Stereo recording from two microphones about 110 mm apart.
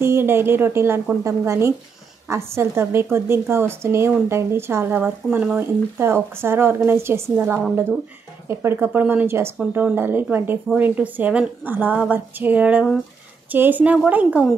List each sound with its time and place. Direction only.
0.0 s a woman's voice: 20° right (ahead or behind)